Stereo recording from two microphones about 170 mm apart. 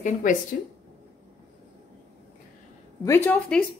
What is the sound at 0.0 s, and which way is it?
Speech, 50° left (ahead or behind).